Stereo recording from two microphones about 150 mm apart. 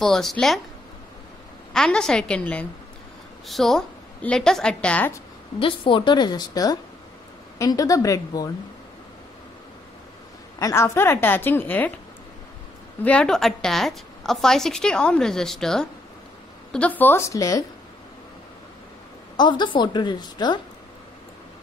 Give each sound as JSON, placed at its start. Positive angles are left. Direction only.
{"t": 0.0, "sound": "a woman's voice", "side_deg": 0}
{"t": 1.7, "sound": "a woman's voice", "side_deg": 5}
{"t": 5.6, "sound": "a woman's voice", "side_deg": 35}
{"t": 10.6, "sound": "a woman's voice", "side_deg": 15}
{"t": 13.0, "sound": "a woman's voice", "side_deg": 5}
{"t": 19.3, "sound": "a woman's voice", "side_deg": 30}